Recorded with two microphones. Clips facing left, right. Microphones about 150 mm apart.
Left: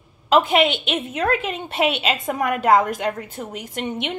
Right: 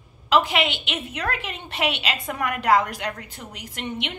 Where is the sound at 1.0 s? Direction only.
25° left (ahead or behind).